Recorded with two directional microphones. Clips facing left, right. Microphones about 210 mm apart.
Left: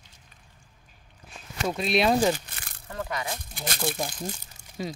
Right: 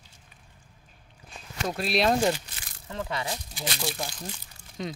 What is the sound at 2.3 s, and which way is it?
Crumpling, 55° left (ahead or behind).